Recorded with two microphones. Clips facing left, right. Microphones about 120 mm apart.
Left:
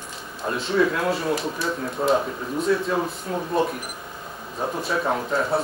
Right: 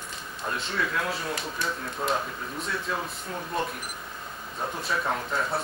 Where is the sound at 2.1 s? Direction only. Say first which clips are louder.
Left 8 dB; centre (ahead or behind).